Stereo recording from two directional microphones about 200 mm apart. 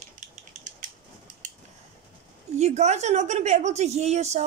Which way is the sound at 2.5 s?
35° right (ahead or behind).